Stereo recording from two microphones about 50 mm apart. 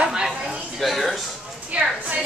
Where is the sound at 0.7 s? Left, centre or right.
Centre.